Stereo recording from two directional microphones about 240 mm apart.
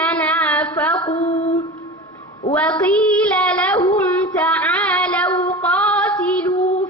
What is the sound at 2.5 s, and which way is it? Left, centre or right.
Child singing, centre.